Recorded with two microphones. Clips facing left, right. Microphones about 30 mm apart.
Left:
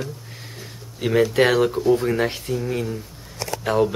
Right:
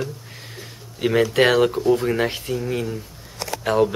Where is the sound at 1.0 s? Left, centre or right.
Centre.